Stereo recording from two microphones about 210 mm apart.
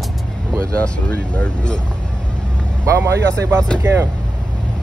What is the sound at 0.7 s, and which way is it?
Speech, 5° left (ahead or behind).